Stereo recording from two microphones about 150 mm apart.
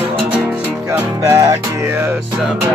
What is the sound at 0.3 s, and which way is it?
Music, 10° right (ahead or behind).